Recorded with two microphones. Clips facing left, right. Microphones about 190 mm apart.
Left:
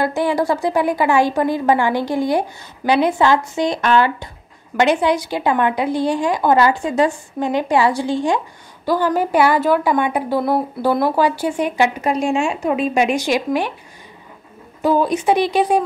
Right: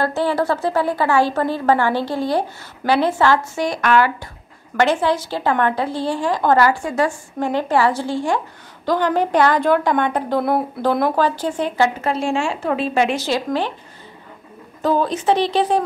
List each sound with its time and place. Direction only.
0.0 s a woman's voice: 15° left (ahead or behind)
14.8 s a woman's voice: 10° left (ahead or behind)